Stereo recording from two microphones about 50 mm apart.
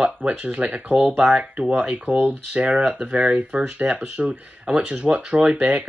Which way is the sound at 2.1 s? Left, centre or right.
Right.